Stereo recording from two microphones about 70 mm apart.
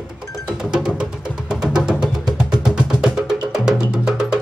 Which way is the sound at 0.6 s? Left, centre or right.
Centre.